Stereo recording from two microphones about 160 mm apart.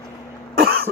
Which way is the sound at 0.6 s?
70° right (ahead or behind).